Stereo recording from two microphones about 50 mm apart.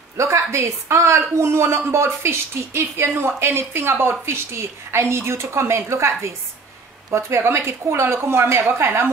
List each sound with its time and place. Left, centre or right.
0.2 s a woman's voice: right